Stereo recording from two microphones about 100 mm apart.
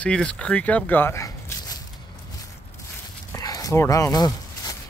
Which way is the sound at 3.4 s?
35° left (ahead or behind).